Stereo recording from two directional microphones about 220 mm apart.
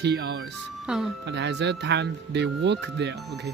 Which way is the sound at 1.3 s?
50° right (ahead or behind).